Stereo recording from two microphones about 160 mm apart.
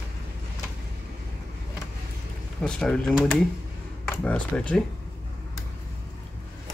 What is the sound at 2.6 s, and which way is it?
Speech, 5° left (ahead or behind).